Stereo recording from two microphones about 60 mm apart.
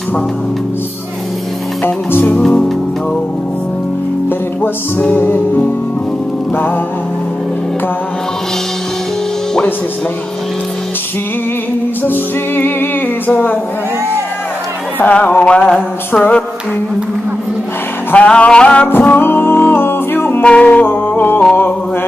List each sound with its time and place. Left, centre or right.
1.9 s music: left
4.3 s music: left
12.0 s music: left
15.0 s music: left
18.1 s music: left
19.0 s music: left
20.4 s music: left